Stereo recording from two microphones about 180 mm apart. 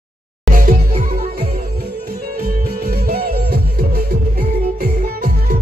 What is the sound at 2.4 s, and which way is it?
Music, 55° right (ahead or behind).